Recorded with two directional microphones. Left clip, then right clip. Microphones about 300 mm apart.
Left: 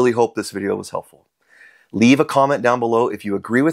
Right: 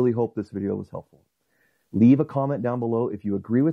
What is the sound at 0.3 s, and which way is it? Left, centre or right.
Speech, centre.